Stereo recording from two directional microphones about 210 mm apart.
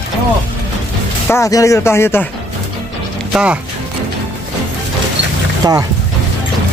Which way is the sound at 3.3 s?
5° right (ahead or behind).